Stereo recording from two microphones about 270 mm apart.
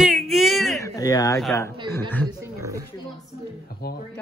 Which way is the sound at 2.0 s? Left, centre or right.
Centre.